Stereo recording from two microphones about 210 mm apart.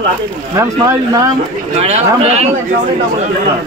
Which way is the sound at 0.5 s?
15° right (ahead or behind).